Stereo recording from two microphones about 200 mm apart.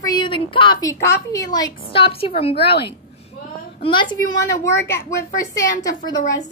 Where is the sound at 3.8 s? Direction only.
25° left (ahead or behind).